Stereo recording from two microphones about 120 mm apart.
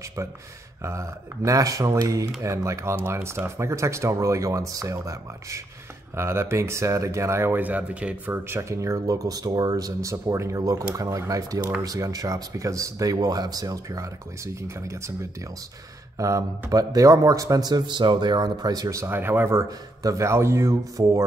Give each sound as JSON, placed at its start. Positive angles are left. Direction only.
{"t": 0.8, "sound": "speech", "side_deg": -25}
{"t": 16.2, "sound": "speech", "side_deg": -25}